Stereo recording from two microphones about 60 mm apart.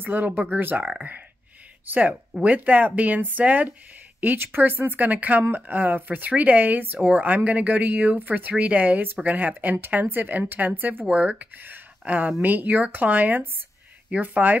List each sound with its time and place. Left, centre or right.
0.0 s speech: right